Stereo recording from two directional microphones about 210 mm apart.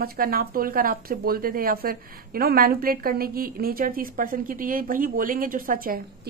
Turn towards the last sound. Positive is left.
turn(degrees=-40)  # may be behind; listen again after turning